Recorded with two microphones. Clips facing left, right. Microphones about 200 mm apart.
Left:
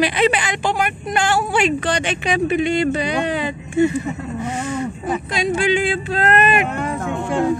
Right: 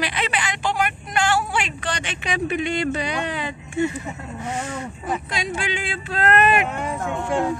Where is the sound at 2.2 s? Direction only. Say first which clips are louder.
Left 5 dB; 35° left (ahead or behind).